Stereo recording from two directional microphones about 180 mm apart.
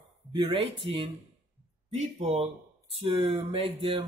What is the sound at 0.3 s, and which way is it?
Speech, 25° right (ahead or behind).